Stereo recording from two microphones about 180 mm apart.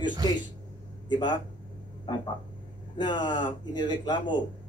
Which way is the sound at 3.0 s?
25° left (ahead or behind).